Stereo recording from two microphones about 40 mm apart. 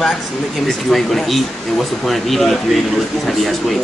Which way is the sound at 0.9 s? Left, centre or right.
Centre.